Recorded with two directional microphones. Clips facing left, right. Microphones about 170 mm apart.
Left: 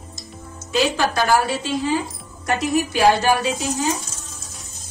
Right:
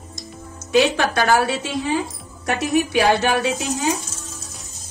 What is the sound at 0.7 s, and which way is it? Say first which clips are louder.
Speech: right 3 dB; 70° right (ahead or behind).